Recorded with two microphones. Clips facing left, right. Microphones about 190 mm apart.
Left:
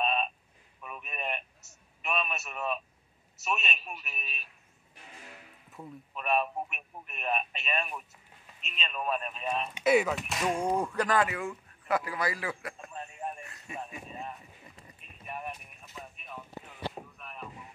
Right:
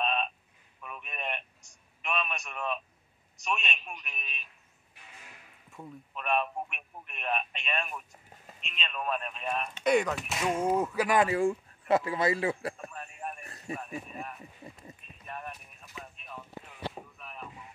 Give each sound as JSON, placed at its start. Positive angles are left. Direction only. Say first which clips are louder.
{"t": 0.0, "sound": "telephone", "louder": "left 1 dB", "side_deg": 5}
{"t": 2.0, "sound": "a man's voice", "louder": "left 1 dB", "side_deg": 5}
{"t": 5.7, "sound": "speech", "louder": "even", "side_deg": 0}
{"t": 11.1, "sound": "a man's voice", "louder": "right 4 dB", "side_deg": -30}
{"t": 12.9, "sound": "a sound", "louder": "left 2 dB", "side_deg": 25}
{"t": 13.4, "sound": "music", "louder": "right 6 dB", "side_deg": -35}
{"t": 13.7, "sound": "speech", "louder": "left 3 dB", "side_deg": 20}
{"t": 15.2, "sound": "clip-clop", "louder": "left 2 dB", "side_deg": 15}
{"t": 16.9, "sound": "a sound", "louder": "left 1 dB", "side_deg": 0}